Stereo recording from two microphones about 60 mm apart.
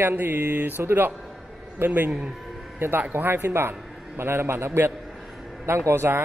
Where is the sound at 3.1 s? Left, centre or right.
Right.